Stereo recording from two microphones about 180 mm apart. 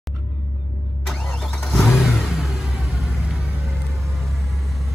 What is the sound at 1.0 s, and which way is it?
Vehicle, centre (ahead or behind).